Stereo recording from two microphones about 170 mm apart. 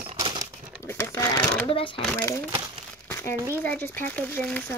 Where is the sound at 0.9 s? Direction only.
15° left (ahead or behind).